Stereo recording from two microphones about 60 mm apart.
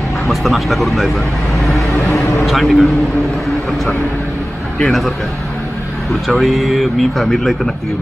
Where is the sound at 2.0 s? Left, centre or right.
Centre.